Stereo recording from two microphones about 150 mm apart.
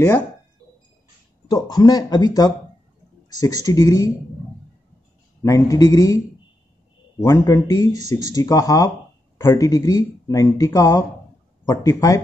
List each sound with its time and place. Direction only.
1.5 s speech: 25° left (ahead or behind)
5.4 s speech: 20° left (ahead or behind)